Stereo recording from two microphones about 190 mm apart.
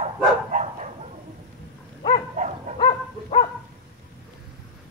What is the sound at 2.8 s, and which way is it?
Dog, 30° left (ahead or behind).